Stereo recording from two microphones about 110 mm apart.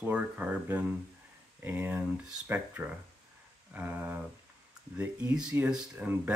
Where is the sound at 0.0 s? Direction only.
15° right (ahead or behind).